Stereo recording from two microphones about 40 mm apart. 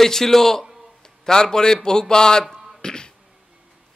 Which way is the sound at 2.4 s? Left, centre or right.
Centre.